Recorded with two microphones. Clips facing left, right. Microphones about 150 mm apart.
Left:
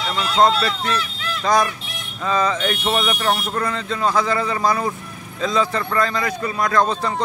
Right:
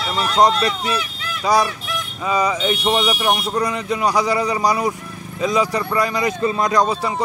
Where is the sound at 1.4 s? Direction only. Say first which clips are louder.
Right 1 dB; 10° right (ahead or behind).